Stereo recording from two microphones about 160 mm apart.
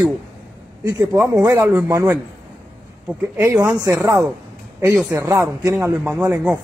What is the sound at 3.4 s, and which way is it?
A man's voice, 15° right (ahead or behind).